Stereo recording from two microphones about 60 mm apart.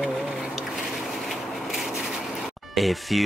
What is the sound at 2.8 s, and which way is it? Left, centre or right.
Speech, centre.